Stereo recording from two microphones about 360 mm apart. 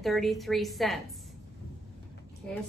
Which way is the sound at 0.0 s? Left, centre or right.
Centre.